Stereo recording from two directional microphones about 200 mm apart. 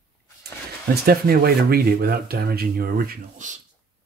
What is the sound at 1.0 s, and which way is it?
Speech, 50° right (ahead or behind).